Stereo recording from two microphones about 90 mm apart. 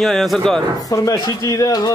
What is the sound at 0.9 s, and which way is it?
A man's voice, 40° left (ahead or behind).